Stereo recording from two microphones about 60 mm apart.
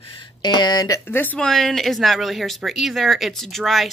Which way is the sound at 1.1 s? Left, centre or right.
Left.